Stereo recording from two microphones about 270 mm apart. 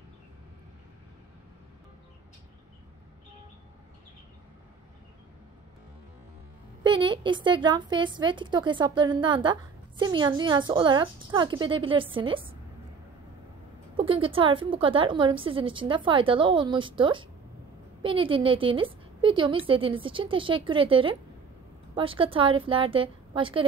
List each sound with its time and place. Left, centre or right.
6.8 s a woman's voice: centre
13.9 s a woman's voice: centre